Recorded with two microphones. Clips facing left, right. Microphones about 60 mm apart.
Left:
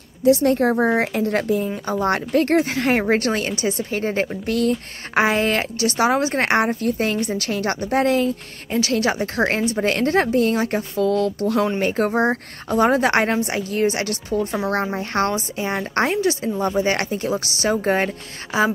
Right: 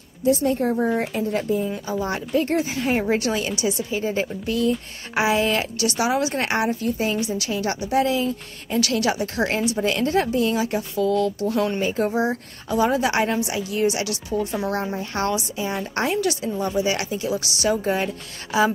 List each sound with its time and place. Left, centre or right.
0.2 s a woman's voice: left
3.0 s a woman's voice: left
8.6 s a woman's voice: left
18.5 s a woman's voice: left